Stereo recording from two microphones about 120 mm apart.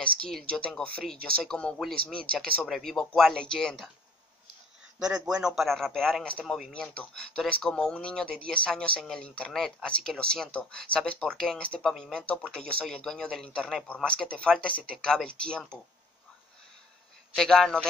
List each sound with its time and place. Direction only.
0.0 s speech: 5° left (ahead or behind)
4.9 s speech: 5° right (ahead or behind)
17.4 s speech: 5° left (ahead or behind)